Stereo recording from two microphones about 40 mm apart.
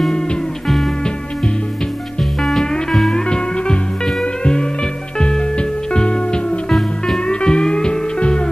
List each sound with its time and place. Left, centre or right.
3.1 s music: left